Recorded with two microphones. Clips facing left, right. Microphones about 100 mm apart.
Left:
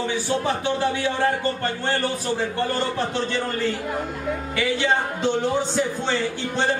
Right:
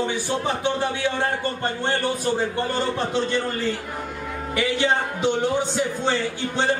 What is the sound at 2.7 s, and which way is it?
Speech, 15° right (ahead or behind).